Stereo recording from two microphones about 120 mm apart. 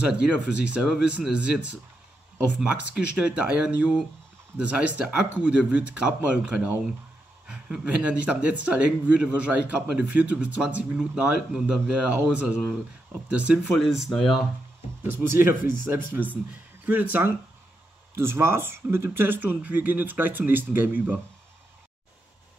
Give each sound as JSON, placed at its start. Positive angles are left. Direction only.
{"t": 0.0, "sound": "a man's voice", "side_deg": -10}
{"t": 15.0, "sound": "a man's voice", "side_deg": -20}